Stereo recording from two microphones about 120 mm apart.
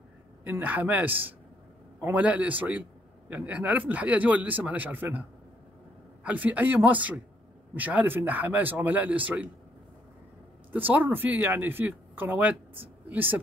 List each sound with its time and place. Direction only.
0.4 s speech: 15° right (ahead or behind)
6.2 s speech: 15° right (ahead or behind)
10.7 s speech: 15° right (ahead or behind)